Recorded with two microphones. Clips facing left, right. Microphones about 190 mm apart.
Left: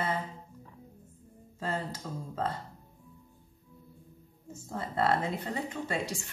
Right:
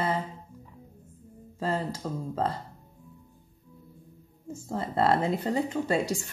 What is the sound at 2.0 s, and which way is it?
Speech, 45° right (ahead or behind).